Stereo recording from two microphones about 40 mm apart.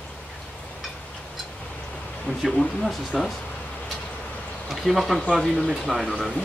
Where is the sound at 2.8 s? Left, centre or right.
Centre.